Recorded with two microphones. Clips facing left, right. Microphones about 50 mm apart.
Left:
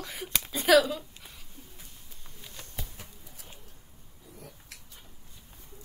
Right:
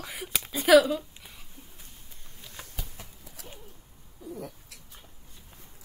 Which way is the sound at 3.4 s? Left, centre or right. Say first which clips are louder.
Right 6 dB; right.